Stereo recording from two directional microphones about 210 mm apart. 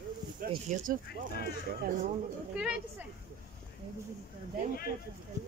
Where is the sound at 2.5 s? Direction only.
5° right (ahead or behind).